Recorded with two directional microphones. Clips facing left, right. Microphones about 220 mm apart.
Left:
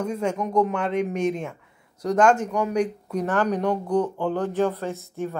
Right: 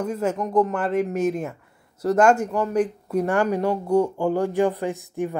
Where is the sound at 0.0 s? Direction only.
5° right (ahead or behind).